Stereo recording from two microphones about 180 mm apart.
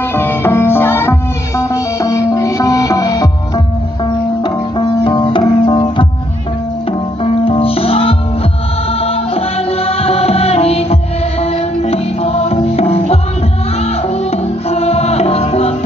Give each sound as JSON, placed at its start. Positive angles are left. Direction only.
{"t": 0.1, "sound": "music", "side_deg": 15}